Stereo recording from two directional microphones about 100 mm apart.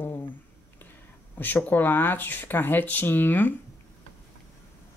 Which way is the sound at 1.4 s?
20° left (ahead or behind).